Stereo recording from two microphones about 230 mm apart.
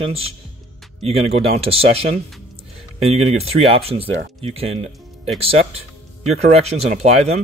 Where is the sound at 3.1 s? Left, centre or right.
Right.